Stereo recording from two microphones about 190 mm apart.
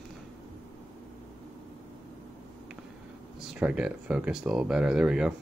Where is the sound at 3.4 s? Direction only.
5° right (ahead or behind).